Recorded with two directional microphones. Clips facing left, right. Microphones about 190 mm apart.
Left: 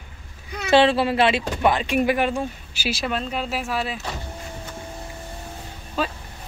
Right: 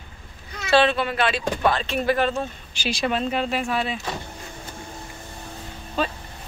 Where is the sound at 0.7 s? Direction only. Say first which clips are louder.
Left 2 dB; 25° left (ahead or behind).